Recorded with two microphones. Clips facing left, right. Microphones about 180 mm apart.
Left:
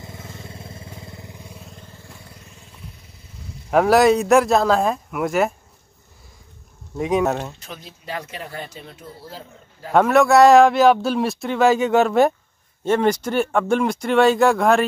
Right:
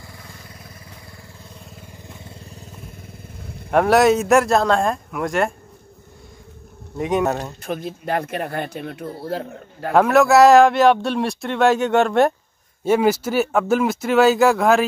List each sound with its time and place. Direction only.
0.0 s vehicle: 20° left (ahead or behind)
1.5 s vehicle: centre (ahead or behind)
1.8 s vehicle: 15° right (ahead or behind)
2.5 s vehicle: 50° right (ahead or behind)
3.7 s speech: centre (ahead or behind)
7.0 s speech: centre (ahead or behind)
7.6 s speech: 55° right (ahead or behind)
9.9 s speech: centre (ahead or behind)